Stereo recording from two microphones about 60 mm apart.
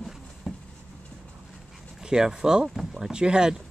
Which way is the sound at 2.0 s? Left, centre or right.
Centre.